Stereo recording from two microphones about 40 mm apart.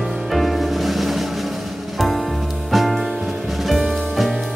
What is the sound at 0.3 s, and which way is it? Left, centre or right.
Music, centre.